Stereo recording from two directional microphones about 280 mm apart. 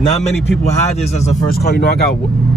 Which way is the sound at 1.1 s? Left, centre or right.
Left.